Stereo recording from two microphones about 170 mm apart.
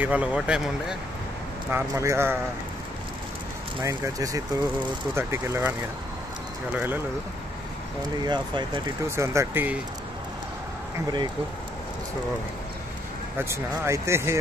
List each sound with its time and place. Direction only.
0.0 s speech: 10° right (ahead or behind)
3.8 s speech: 20° right (ahead or behind)
8.3 s speech: 25° right (ahead or behind)
9.1 s speech: 15° right (ahead or behind)
13.4 s speech: 15° right (ahead or behind)